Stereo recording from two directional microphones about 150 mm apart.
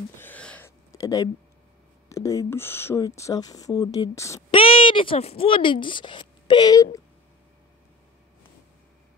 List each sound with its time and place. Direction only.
0.2 s a sound: 10° left (ahead or behind)
2.0 s speech: 20° left (ahead or behind)
4.5 s speech: 35° left (ahead or behind)